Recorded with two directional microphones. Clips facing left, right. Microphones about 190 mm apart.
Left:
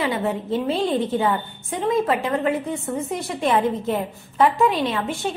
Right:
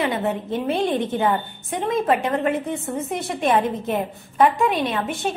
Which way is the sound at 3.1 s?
20° right (ahead or behind).